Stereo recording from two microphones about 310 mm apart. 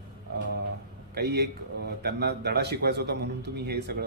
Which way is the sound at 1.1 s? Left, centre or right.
Right.